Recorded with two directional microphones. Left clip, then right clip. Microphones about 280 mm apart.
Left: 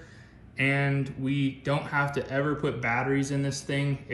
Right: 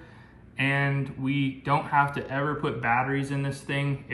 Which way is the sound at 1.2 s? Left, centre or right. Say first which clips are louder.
Right 2 dB; centre.